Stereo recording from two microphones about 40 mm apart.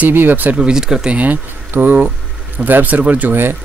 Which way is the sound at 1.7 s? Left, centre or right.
Right.